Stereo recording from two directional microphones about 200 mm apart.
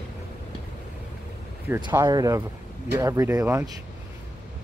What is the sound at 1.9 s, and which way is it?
Speech, 20° right (ahead or behind).